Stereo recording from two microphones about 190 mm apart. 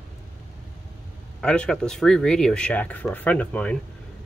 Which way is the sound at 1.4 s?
5° left (ahead or behind).